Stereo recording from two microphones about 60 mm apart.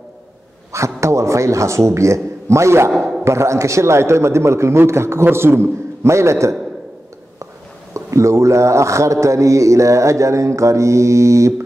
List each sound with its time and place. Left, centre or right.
0.7 s a man's voice: right
7.9 s speech: right